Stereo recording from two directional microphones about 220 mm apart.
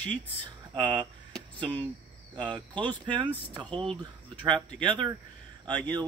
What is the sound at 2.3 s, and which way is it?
Speech, 20° right (ahead or behind).